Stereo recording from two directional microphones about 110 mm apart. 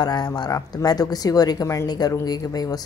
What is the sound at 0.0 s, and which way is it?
Speech, 40° left (ahead or behind).